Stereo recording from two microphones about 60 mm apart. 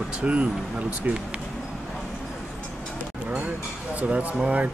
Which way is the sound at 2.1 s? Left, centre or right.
Centre.